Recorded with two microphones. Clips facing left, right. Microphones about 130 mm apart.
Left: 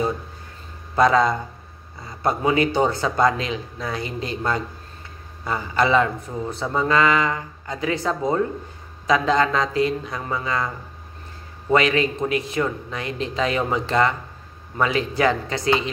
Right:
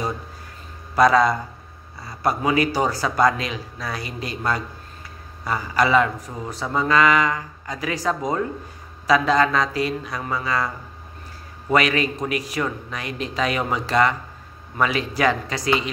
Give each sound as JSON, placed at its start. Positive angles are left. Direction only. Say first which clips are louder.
{"t": 0.9, "sound": "speech", "louder": "right 1 dB", "side_deg": 25}
{"t": 5.4, "sound": "speech", "louder": "even", "side_deg": 25}
{"t": 11.7, "sound": "speech", "louder": "left 1 dB", "side_deg": 25}